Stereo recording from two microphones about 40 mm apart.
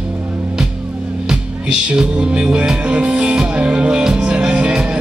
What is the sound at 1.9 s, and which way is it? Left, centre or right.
Music, right.